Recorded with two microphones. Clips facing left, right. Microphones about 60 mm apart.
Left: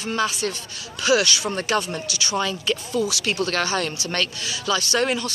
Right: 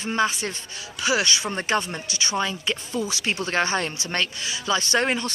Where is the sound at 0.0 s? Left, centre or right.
Right.